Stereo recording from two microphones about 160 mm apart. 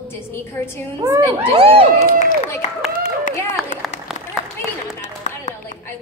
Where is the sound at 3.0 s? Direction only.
50° left (ahead or behind).